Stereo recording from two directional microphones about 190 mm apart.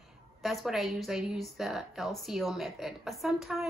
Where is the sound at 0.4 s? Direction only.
Centre (ahead or behind).